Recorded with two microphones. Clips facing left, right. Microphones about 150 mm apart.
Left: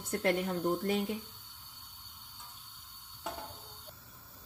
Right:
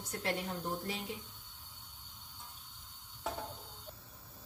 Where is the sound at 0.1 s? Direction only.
50° left (ahead or behind).